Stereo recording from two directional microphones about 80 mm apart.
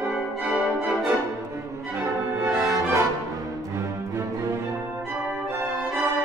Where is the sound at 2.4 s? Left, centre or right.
Right.